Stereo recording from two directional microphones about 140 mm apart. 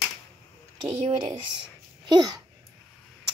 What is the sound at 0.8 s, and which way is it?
Speech, 35° right (ahead or behind).